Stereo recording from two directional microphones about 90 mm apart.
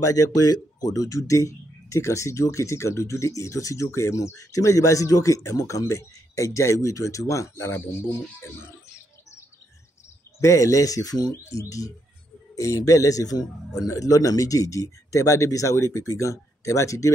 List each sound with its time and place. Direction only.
0.0 s speech: 40° left (ahead or behind)
10.4 s speech: 35° left (ahead or behind)